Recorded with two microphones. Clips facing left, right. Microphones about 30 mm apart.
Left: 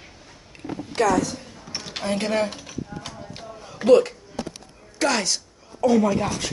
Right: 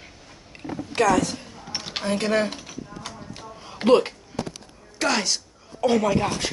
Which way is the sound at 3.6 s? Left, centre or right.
Right.